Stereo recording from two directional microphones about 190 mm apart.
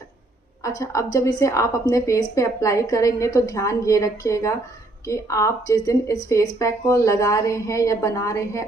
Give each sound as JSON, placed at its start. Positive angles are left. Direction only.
{"t": 0.6, "sound": "a woman's voice", "side_deg": 15}